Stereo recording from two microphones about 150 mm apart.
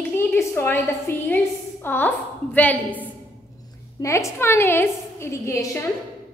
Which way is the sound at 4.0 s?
20° left (ahead or behind).